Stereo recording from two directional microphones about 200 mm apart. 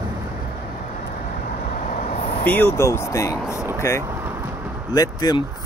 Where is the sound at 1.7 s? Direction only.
40° left (ahead or behind).